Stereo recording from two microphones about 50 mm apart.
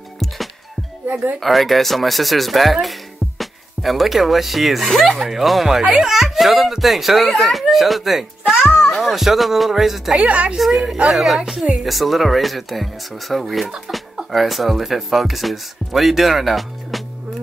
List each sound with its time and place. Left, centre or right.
1.4 s speech: centre
10.1 s a woman's voice: right
10.6 s speech: centre